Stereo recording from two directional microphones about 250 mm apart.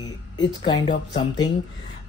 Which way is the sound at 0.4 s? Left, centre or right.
Centre.